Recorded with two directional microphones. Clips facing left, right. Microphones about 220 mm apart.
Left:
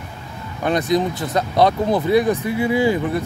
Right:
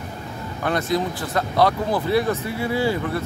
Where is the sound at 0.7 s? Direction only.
20° left (ahead or behind).